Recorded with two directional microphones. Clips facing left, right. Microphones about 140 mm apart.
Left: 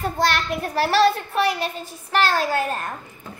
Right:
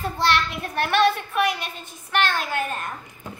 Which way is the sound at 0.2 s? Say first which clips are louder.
Even; 40° left (ahead or behind).